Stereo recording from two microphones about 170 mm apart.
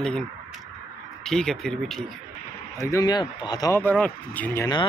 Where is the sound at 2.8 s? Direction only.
20° left (ahead or behind).